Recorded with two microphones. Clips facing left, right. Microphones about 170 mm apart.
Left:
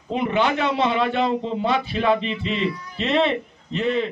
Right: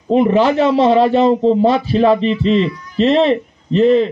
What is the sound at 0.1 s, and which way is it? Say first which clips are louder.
A man's voice: right 9 dB; 35° right (ahead or behind).